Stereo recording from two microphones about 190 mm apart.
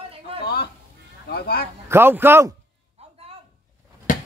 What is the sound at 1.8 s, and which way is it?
Speech, 10° right (ahead or behind).